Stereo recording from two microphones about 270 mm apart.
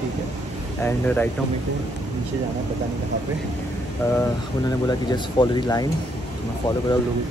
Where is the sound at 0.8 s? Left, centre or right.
Centre.